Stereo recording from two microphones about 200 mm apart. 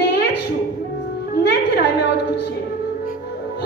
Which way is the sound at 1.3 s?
55° left (ahead or behind).